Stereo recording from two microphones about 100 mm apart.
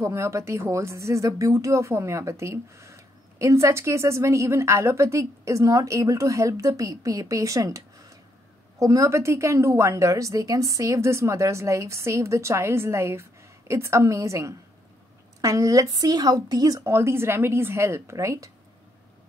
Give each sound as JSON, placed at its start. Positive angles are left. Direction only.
{"t": 0.0, "sound": "a woman's voice", "side_deg": -30}
{"t": 16.8, "sound": "speech", "side_deg": -25}